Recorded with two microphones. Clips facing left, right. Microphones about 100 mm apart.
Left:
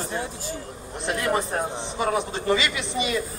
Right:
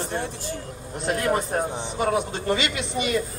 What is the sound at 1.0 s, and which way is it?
A man's voice, 50° right (ahead or behind).